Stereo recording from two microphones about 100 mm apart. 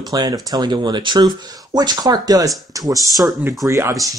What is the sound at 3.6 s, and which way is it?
Speech, 30° right (ahead or behind).